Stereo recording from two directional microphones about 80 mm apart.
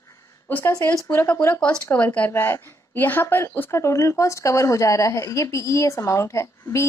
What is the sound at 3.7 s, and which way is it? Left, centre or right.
Speech, left.